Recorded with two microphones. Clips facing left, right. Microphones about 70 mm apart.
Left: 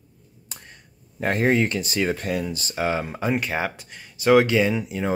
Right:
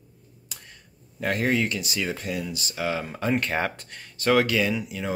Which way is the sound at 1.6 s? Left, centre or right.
Left.